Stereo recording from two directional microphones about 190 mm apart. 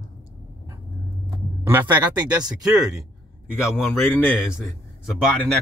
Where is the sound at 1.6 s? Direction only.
10° right (ahead or behind).